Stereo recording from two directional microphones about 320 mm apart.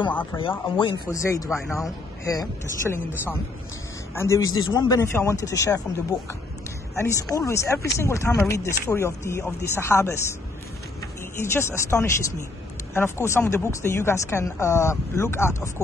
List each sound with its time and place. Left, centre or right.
0.0 s speech: centre
0.4 s speech: centre
1.5 s speech: centre
2.9 s speech: centre
4.5 s a man's voice: left
4.7 s speech: centre
11.3 s speech: centre